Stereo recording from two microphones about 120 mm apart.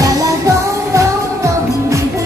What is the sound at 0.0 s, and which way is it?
Music, 25° right (ahead or behind).